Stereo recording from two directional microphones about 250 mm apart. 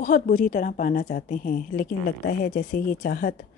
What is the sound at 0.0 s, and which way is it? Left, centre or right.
A woman's voice, left.